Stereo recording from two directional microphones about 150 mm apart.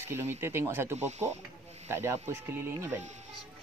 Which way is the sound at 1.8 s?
15° right (ahead or behind).